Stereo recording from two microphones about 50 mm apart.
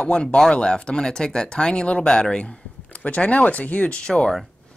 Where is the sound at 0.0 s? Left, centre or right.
Left.